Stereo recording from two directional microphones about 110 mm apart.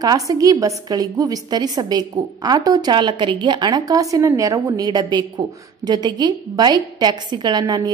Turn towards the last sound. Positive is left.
turn(degrees=-35)  # may be behind; listen again after turning